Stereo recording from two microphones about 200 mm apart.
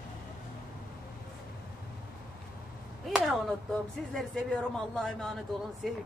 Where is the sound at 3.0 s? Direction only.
Centre (ahead or behind).